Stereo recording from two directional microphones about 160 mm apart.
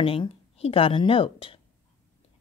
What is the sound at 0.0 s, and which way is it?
A woman's voice, 35° left (ahead or behind).